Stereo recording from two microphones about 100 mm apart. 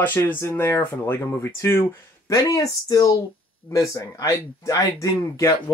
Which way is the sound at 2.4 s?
40° left (ahead or behind).